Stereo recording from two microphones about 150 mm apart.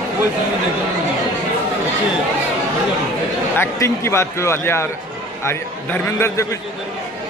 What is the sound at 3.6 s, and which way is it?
A man's voice, 15° left (ahead or behind).